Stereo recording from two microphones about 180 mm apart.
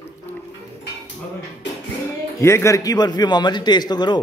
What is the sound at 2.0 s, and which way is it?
A man's voice, 15° left (ahead or behind).